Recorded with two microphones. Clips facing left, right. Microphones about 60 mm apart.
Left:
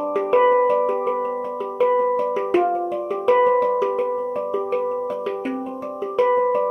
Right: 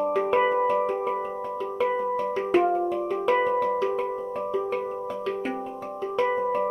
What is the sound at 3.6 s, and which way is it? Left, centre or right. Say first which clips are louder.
Music: left 5 dB; centre.